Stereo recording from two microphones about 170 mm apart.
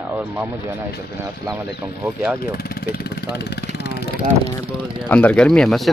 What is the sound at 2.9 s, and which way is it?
Speech, 70° left (ahead or behind).